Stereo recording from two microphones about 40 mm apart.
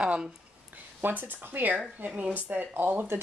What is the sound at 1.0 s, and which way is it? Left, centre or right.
Speech, right.